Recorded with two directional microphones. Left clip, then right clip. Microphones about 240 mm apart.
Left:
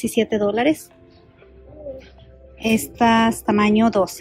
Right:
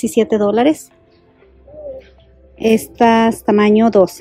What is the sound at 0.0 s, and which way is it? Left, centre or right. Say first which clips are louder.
Speech: right 5 dB; right.